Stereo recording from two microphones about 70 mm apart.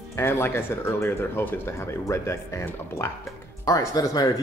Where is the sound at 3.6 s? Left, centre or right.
Left.